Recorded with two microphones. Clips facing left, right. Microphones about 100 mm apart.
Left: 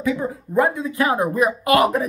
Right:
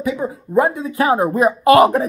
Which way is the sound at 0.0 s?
20° right (ahead or behind).